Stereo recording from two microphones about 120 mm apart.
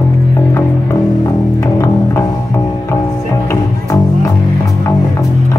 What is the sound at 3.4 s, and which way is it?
Music, 25° left (ahead or behind).